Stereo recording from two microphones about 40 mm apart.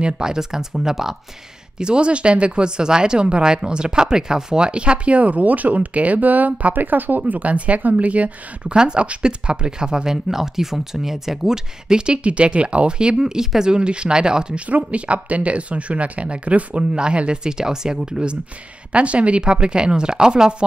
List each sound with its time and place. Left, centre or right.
0.0 s speech: centre
1.8 s speech: right
8.7 s speech: right
12.2 s speech: right
14.7 s speech: right